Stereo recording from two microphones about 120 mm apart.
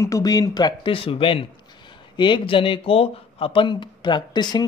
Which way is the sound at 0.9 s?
50° left (ahead or behind).